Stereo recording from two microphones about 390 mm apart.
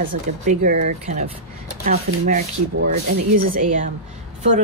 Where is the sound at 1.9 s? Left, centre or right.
Centre.